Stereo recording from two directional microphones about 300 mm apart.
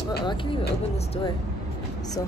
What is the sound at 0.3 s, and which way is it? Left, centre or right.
A woman's voice, centre.